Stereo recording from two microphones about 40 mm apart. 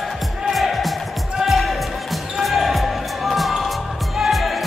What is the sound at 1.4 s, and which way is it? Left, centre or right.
Basketball bounce, centre.